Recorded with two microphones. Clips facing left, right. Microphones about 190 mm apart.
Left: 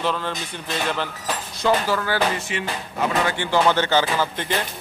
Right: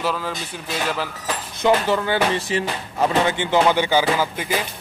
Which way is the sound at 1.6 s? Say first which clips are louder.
Right 3 dB; 20° right (ahead or behind).